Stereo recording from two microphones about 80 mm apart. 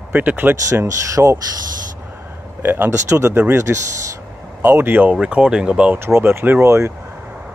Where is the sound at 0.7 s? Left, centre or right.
Right.